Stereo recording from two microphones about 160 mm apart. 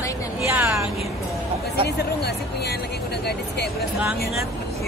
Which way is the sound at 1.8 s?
90° left.